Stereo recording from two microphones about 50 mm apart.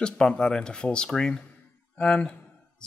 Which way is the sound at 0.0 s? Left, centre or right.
Centre.